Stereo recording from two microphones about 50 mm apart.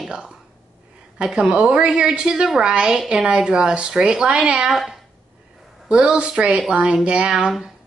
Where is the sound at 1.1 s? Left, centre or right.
Centre.